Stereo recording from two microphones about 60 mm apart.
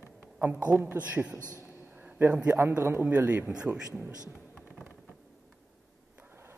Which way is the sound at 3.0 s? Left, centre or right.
Right.